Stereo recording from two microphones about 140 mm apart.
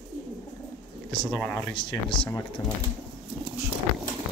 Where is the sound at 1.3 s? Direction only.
5° left (ahead or behind).